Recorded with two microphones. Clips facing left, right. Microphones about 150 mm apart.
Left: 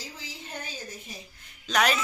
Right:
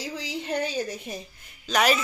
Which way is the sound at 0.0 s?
75° right (ahead or behind).